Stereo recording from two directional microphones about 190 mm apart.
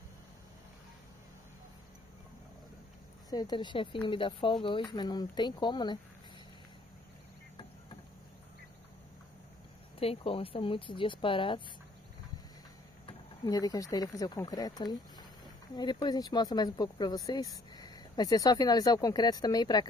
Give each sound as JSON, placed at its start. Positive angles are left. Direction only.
{"t": 3.3, "sound": "speech", "side_deg": 20}
{"t": 9.9, "sound": "speech", "side_deg": 30}
{"t": 13.0, "sound": "speech", "side_deg": 20}